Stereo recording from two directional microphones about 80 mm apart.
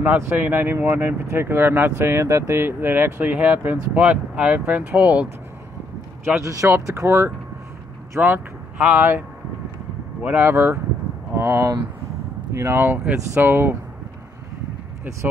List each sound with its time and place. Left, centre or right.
0.0 s speech: right
6.9 s speech: right
8.2 s speech: centre
10.2 s speech: right